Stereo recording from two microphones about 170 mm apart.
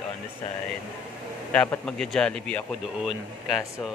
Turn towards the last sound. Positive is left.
turn(degrees=0)  # may be behind; listen again after turning